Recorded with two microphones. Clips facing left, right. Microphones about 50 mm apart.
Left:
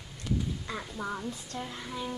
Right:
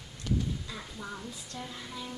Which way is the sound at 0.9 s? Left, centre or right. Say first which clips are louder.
Left 7 dB; left.